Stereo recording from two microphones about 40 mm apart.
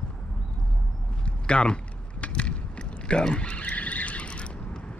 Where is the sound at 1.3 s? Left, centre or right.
Left.